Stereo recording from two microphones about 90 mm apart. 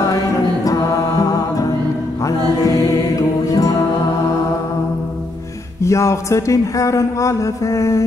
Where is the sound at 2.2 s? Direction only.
40° left (ahead or behind).